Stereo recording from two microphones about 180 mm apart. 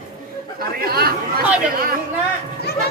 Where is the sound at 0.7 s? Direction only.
60° right (ahead or behind).